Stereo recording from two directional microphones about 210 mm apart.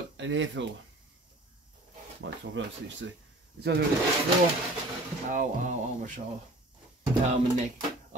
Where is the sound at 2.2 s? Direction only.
60° right (ahead or behind).